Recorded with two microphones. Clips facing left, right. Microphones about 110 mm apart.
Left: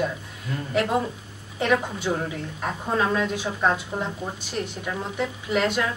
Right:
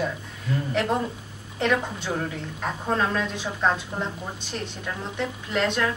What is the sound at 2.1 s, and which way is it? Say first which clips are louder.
A woman's voice: left 3 dB; 15° left (ahead or behind).